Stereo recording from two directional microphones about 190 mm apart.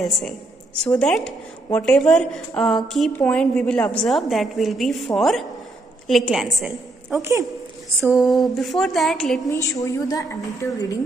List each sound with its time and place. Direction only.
0.8 s a woman's voice: 5° left (ahead or behind)
9.5 s a woman's voice: 15° left (ahead or behind)